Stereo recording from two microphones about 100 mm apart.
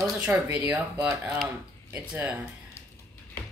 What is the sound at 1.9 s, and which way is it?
Speech, 15° right (ahead or behind).